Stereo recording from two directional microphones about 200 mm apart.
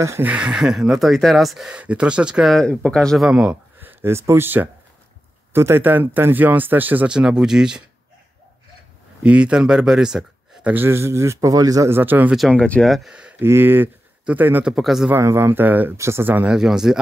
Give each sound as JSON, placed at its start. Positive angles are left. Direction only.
{"t": 0.0, "sound": "a man's voice", "side_deg": -10}
{"t": 9.2, "sound": "a man's voice", "side_deg": -5}
{"t": 15.1, "sound": "speech", "side_deg": -10}